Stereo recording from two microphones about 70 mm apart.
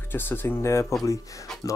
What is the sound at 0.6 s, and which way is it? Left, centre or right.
Speech, left.